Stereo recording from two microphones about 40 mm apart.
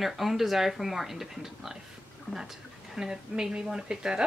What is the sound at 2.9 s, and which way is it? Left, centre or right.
Speech, centre.